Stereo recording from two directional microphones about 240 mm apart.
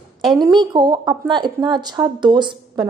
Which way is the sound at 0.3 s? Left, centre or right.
Centre.